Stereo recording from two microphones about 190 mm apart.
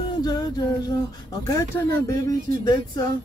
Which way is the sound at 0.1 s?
20° left (ahead or behind).